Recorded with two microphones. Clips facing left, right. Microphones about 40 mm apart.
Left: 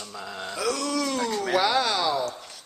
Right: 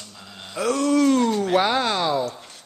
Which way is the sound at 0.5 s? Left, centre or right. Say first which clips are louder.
Right 7 dB; right.